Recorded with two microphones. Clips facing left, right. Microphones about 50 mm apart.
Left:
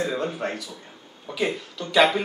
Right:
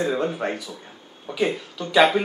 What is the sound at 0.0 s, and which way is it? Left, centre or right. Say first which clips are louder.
Speech: right 3 dB; centre.